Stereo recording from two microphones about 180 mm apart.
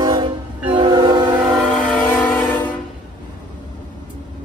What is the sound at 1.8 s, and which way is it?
Train, 10° left (ahead or behind).